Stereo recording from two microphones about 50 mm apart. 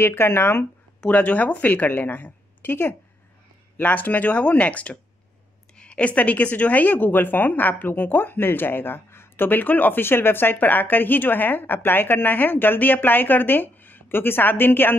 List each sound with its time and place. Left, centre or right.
0.0 s speech: left
1.0 s speech: left
3.7 s speech: left
9.5 s speech: left